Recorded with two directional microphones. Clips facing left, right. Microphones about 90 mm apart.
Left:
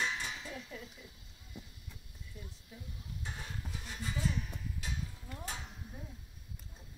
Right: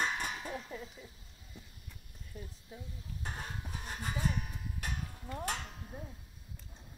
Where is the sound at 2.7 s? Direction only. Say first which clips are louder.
Right 4 dB; 30° right (ahead or behind).